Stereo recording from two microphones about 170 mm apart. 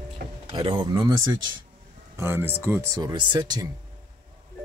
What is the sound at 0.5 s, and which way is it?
Speech, 25° right (ahead or behind).